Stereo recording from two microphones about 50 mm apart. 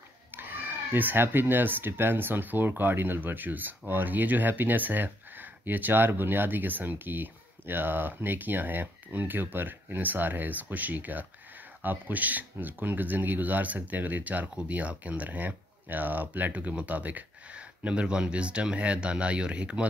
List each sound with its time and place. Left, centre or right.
0.3 s speech: right